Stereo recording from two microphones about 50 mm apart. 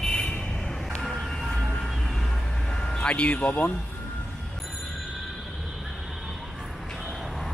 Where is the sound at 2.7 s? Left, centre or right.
Centre.